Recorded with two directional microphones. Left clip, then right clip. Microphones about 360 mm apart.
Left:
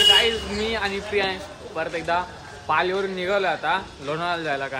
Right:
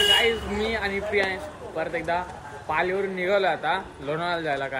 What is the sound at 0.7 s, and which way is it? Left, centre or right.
A man's voice, centre.